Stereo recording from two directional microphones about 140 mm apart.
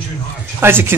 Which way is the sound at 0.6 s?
15° right (ahead or behind).